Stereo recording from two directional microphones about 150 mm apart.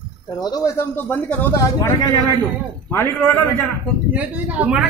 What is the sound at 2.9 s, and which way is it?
Speech, 15° left (ahead or behind).